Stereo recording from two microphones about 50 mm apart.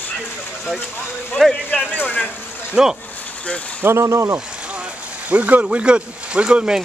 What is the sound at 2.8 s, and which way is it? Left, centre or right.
Speech, centre.